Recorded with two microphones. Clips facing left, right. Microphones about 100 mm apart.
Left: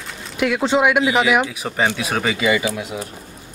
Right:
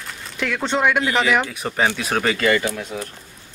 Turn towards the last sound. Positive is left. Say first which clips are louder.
# left 1 dB
turn(degrees=10)  # may be behind; listen again after turning